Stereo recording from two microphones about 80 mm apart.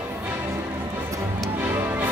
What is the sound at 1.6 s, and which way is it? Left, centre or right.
Music, right.